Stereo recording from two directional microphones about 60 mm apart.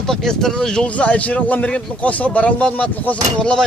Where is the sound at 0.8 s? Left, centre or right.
Left.